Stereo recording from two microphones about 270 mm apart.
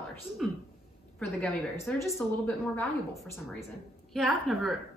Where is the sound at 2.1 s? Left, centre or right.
Centre.